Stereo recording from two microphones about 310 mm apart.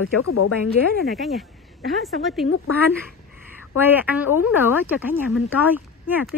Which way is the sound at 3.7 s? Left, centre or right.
Centre.